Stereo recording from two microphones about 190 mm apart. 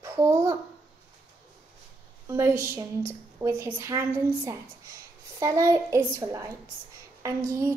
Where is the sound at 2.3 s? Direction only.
15° right (ahead or behind).